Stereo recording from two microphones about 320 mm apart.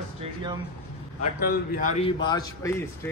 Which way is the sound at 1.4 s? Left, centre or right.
Left.